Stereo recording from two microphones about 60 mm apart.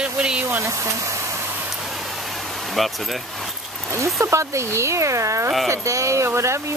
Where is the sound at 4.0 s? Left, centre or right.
Right.